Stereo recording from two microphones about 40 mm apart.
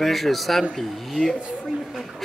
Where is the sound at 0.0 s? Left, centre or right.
Centre.